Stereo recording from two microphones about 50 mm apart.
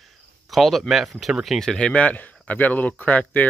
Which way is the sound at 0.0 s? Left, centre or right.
Centre.